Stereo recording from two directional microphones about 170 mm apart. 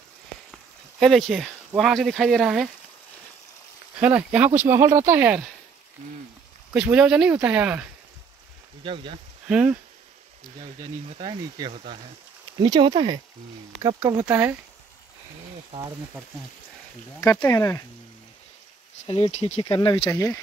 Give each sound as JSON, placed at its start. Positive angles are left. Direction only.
{"t": 0.5, "sound": "a sound", "side_deg": 0}
{"t": 1.8, "sound": "speech", "side_deg": 0}
{"t": 4.0, "sound": "speech", "side_deg": -10}
{"t": 6.7, "sound": "speech", "side_deg": -5}
{"t": 8.8, "sound": "speech", "side_deg": -30}
{"t": 9.5, "sound": "speech", "side_deg": -5}
{"t": 10.6, "sound": "speech", "side_deg": -35}
{"t": 14.0, "sound": "speech", "side_deg": -15}
{"t": 17.2, "sound": "speech", "side_deg": 20}
{"t": 19.0, "sound": "speech", "side_deg": 35}
{"t": 19.6, "sound": "speech", "side_deg": 25}